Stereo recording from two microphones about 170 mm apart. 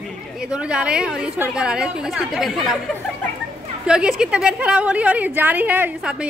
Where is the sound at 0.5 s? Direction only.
5° right (ahead or behind).